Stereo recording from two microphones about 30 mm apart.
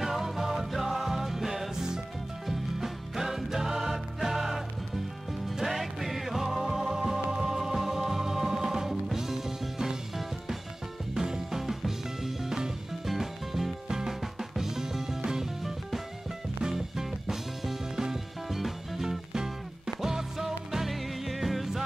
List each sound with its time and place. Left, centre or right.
0.0 s music: centre
11.1 s music: centre
11.6 s music: centre
12.4 s music: centre
13.0 s music: centre
16.7 s music: centre